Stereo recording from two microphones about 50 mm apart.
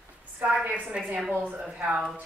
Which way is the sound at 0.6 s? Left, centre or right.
Right.